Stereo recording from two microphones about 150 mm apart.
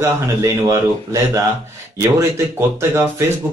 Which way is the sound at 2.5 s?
20° right (ahead or behind).